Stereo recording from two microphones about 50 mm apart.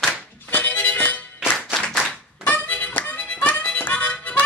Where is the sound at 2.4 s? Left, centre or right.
Left.